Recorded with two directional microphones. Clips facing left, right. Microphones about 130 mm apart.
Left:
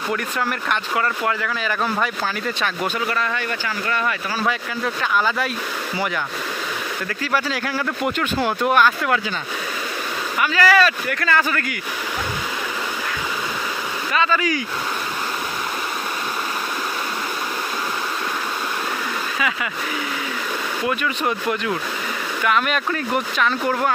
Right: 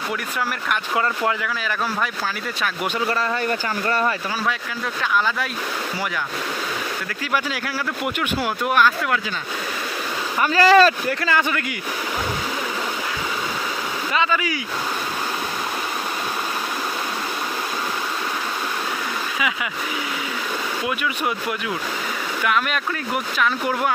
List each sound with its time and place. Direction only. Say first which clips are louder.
1.4 s speech: left 2 dB; centre (ahead or behind)
3.1 s speech: right 2 dB; 35° right (ahead or behind)
5.1 s speech: left 1 dB; 5° left (ahead or behind)
7.3 s speech: left 2 dB; 10° right (ahead or behind)
10.4 s speech: right 3 dB; 35° right (ahead or behind)
11.1 s speech: even; 25° right (ahead or behind)
14.1 s speech: left 2 dB; 10° right (ahead or behind)
22.4 s speech: left 2 dB; centre (ahead or behind)